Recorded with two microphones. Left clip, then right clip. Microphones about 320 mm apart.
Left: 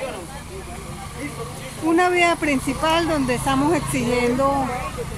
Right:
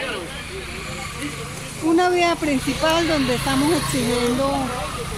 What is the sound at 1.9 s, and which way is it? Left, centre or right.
Speech, centre.